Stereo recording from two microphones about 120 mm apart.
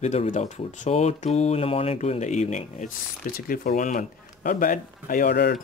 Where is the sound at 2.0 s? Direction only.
75° left (ahead or behind).